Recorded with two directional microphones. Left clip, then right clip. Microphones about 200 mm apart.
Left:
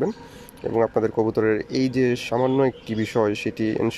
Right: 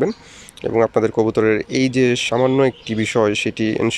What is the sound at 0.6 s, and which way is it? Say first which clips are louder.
Speech: right 5 dB; centre (ahead or behind).